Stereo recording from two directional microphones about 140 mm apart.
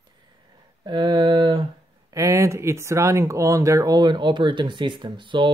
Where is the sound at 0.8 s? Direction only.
30° right (ahead or behind).